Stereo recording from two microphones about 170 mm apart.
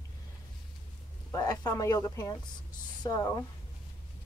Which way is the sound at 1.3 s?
20° left (ahead or behind).